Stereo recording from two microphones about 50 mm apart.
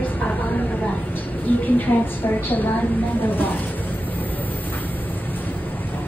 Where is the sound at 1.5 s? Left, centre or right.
Left.